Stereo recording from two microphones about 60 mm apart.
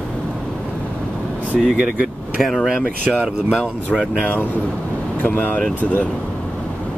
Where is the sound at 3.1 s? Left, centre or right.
Centre.